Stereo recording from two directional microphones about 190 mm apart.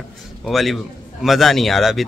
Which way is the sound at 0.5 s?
Centre (ahead or behind).